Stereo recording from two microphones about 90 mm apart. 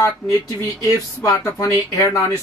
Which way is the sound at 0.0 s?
35° left (ahead or behind).